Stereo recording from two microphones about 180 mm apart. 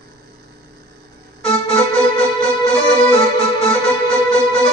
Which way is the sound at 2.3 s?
30° left (ahead or behind).